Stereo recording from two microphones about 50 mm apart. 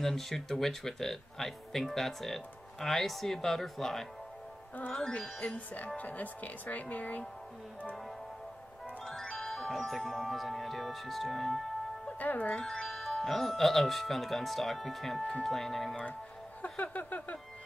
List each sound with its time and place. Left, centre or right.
0.0 s speech: centre
4.9 s music: centre
5.9 s speech: left
9.0 s speech: centre
12.2 s speech: left
12.6 s speech: centre
16.6 s a sound: left
16.9 s speech: left